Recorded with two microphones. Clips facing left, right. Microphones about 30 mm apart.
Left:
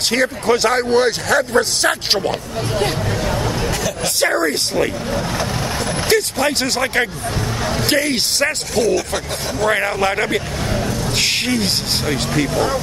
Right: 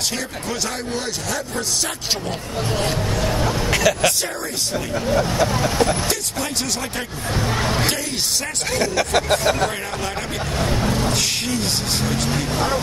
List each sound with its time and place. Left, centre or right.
0.1 s speech: left
3.7 s speech: right
4.2 s speech: left
6.0 s speech: left
8.7 s speech: right
9.7 s speech: left